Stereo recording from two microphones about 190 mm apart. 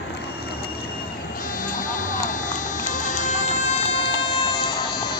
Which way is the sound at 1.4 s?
45° left (ahead or behind).